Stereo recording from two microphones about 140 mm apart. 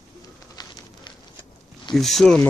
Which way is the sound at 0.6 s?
30° left (ahead or behind).